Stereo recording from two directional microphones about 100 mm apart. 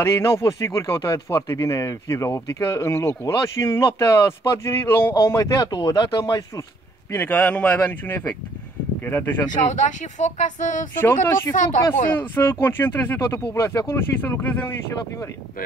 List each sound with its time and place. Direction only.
0.0 s speech: 25° left (ahead or behind)
5.7 s speech: 50° left (ahead or behind)
7.1 s speech: 20° left (ahead or behind)
10.2 s speech: 90° left
11.0 s speech: 25° left (ahead or behind)